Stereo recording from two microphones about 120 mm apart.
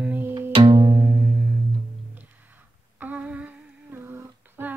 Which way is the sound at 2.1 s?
15° right (ahead or behind).